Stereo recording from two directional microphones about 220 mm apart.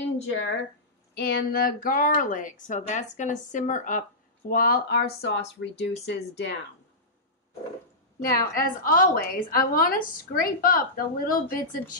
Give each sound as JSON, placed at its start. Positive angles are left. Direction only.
{"t": 0.3, "sound": "a woman's voice", "side_deg": 55}
{"t": 8.5, "sound": "a woman's voice", "side_deg": 40}